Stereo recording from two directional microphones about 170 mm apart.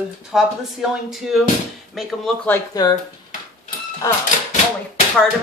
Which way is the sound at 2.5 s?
20° left (ahead or behind).